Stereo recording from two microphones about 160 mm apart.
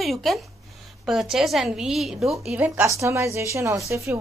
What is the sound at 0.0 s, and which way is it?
A woman's voice, centre (ahead or behind).